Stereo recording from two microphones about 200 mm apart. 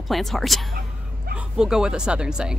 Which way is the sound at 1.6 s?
5° right (ahead or behind).